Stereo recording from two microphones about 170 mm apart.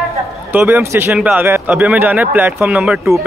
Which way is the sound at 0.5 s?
10° right (ahead or behind).